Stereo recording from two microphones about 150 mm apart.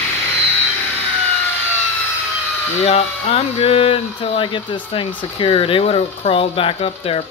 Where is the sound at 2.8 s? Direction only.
40° left (ahead or behind).